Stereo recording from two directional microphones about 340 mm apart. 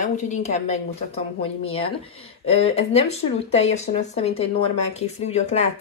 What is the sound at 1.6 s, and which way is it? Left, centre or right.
A woman's voice, centre.